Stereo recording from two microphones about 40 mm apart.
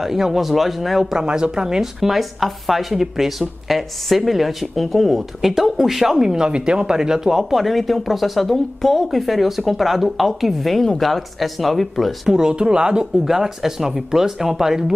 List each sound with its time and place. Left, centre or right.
0.0 s speech: centre
1.3 s speech: centre
2.0 s speech: centre
12.3 s speech: centre
13.2 s speech: centre